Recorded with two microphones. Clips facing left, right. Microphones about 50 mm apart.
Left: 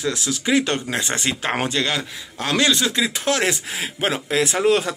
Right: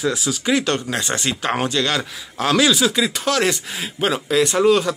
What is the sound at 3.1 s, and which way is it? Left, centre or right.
Speech, centre.